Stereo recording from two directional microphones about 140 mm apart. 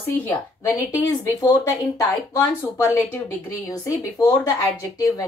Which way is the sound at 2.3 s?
20° left (ahead or behind).